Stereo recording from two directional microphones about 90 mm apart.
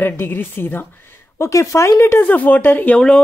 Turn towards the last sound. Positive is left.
turn(degrees=10)  # may be behind; listen again after turning